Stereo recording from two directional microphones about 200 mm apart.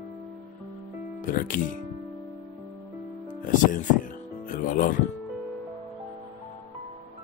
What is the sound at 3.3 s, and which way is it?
Speech, 40° left (ahead or behind).